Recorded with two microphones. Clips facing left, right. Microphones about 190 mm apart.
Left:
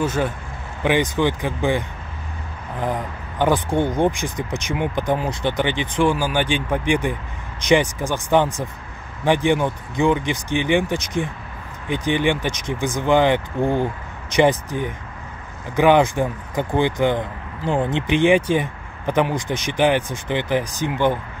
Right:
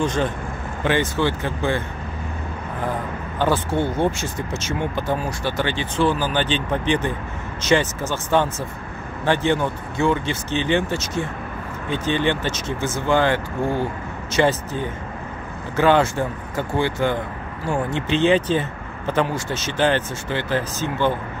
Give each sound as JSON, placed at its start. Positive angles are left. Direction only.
{"t": 0.0, "sound": "speech", "side_deg": 5}
{"t": 2.8, "sound": "speech", "side_deg": 15}